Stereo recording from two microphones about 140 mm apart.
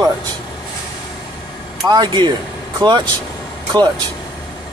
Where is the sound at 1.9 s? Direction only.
30° right (ahead or behind).